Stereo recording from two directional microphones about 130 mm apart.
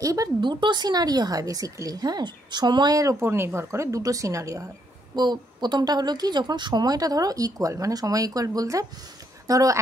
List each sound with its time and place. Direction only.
0.0 s speech: 25° right (ahead or behind)